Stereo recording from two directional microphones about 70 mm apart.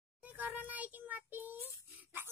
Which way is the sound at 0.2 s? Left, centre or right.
Right.